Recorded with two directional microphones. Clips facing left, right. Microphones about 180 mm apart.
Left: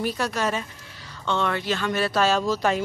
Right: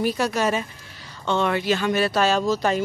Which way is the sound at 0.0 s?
5° right (ahead or behind).